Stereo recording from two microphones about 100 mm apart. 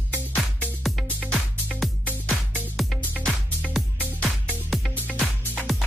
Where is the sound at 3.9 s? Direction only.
15° right (ahead or behind).